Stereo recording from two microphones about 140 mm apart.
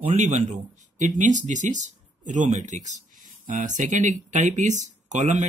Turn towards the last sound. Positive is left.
turn(degrees=-60)  # may be behind; listen again after turning